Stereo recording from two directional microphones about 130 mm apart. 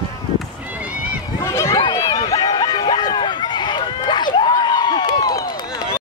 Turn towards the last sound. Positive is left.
turn(degrees=30)  # may be behind; listen again after turning